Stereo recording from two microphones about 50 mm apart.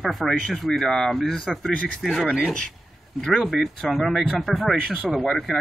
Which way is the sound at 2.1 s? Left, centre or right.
Centre.